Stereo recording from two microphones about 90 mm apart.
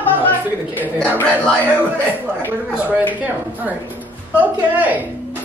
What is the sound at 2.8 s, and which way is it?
Speech, 15° right (ahead or behind).